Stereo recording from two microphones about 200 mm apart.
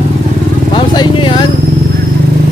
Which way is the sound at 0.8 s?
25° left (ahead or behind).